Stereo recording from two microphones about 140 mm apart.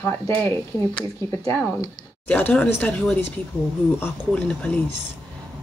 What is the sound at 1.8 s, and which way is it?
Speech, 10° left (ahead or behind).